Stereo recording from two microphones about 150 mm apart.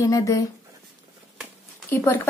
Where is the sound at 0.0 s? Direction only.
20° left (ahead or behind).